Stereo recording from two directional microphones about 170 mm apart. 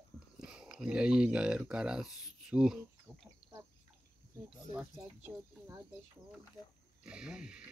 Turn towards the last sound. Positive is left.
turn(degrees=-5)  # may be behind; listen again after turning